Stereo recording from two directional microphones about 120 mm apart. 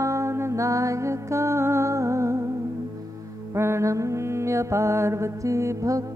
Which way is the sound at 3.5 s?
20° right (ahead or behind).